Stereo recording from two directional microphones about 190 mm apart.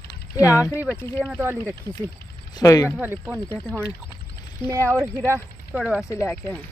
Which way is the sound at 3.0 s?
10° right (ahead or behind).